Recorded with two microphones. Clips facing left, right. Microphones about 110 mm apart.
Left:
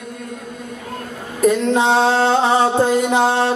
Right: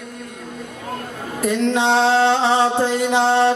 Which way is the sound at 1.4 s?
35° left (ahead or behind).